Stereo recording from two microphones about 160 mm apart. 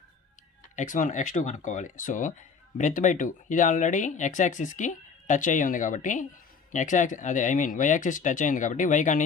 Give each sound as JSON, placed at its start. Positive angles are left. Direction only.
{"t": 0.7, "sound": "speech", "side_deg": 50}